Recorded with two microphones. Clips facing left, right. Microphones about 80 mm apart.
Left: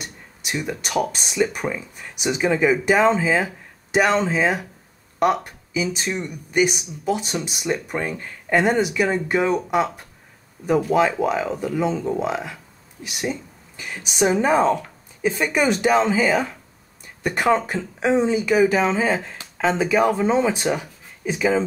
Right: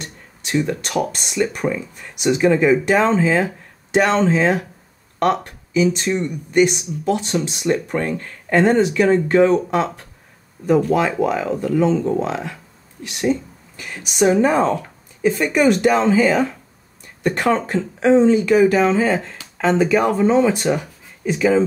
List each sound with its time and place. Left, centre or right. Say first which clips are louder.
0.0 s speech: right 1 dB; centre